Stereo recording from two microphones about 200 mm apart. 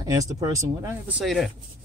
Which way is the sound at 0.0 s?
15° right (ahead or behind).